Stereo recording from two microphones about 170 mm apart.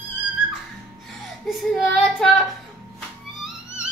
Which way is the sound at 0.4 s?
90° left.